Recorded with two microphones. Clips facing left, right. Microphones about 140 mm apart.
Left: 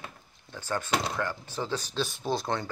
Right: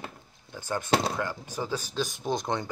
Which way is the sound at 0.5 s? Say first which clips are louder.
Right 3 dB; 15° right (ahead or behind).